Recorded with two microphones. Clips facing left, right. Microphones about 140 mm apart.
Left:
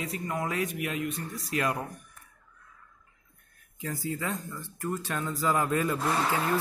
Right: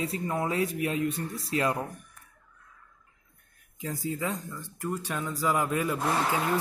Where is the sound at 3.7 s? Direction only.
20° right (ahead or behind).